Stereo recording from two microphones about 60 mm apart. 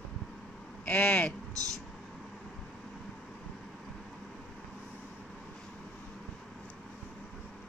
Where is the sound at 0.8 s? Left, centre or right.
Left.